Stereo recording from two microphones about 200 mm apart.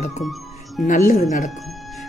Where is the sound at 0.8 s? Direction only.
40° left (ahead or behind).